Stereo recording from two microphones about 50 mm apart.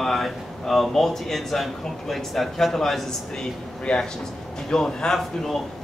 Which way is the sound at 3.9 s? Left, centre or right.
Centre.